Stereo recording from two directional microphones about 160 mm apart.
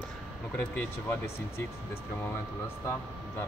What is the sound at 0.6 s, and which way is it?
Speech, 10° left (ahead or behind).